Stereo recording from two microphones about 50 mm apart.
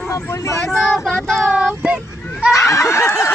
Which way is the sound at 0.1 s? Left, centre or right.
Left.